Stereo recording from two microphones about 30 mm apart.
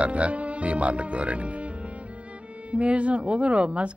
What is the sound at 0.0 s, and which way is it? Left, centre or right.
A woman's voice, right.